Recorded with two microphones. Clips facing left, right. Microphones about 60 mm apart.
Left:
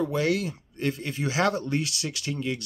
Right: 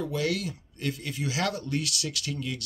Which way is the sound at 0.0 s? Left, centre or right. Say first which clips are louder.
Left 4 dB; left.